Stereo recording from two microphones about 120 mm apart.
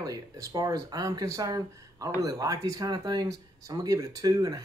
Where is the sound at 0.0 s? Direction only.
30° right (ahead or behind).